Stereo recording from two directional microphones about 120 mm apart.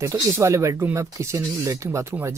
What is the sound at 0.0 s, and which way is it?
Speech, 25° right (ahead or behind).